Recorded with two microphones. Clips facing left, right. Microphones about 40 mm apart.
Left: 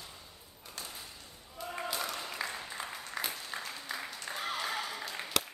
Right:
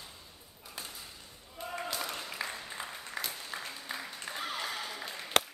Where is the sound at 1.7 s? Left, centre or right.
Centre.